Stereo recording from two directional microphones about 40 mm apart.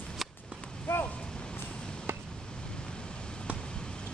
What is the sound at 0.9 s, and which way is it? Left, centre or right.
Vehicle, left.